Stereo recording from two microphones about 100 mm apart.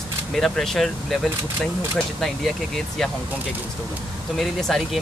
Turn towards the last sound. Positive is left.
turn(degrees=5)  # may be behind; listen again after turning